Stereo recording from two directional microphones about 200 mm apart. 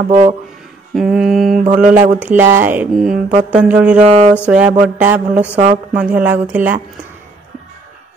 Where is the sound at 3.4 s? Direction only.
5° right (ahead or behind).